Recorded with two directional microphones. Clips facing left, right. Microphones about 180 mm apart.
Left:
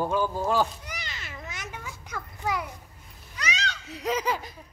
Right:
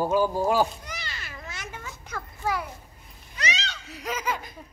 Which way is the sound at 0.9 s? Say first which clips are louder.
Right 1 dB; 20° left (ahead or behind).